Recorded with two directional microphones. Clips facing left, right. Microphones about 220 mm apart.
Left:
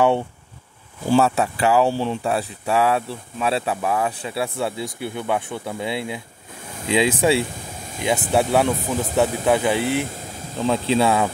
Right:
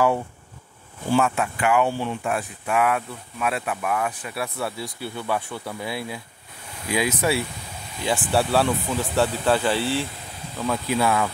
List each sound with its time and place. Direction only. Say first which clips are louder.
1.1 s speech: left 4 dB; 35° left (ahead or behind)